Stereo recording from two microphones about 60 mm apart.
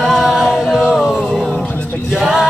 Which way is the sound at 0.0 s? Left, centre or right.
Centre.